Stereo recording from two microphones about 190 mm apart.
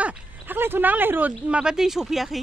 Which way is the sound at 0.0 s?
10° right (ahead or behind).